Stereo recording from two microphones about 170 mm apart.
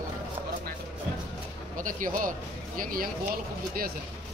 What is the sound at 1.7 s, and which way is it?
A man's voice, 50° right (ahead or behind).